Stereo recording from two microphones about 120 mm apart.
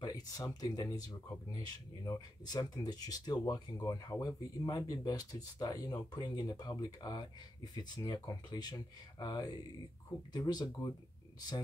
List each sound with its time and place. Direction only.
0.0 s speech: 30° left (ahead or behind)
2.0 s speech: 35° left (ahead or behind)